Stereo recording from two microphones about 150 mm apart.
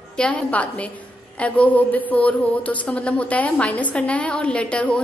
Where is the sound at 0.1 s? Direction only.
5° left (ahead or behind).